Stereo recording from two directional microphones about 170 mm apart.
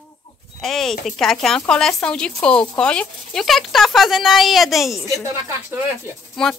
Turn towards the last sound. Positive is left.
turn(degrees=5)  # may be behind; listen again after turning